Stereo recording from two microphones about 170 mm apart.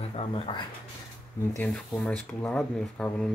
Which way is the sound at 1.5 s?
10° left (ahead or behind).